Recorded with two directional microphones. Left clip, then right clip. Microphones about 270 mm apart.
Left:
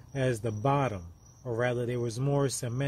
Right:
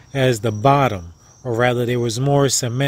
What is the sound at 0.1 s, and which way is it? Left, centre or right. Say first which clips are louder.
Speech: right 12 dB; right.